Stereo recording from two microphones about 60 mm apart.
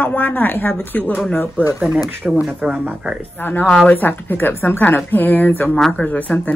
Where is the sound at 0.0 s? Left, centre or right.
Left.